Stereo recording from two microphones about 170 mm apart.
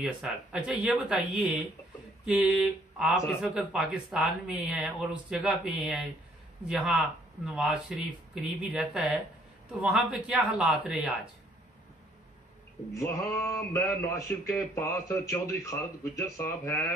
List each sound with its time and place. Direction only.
0.2 s a man's voice: 5° right (ahead or behind)
2.2 s mantra: 5° right (ahead or behind)
3.3 s a man's voice: centre (ahead or behind)
12.9 s a man's voice: 15° left (ahead or behind)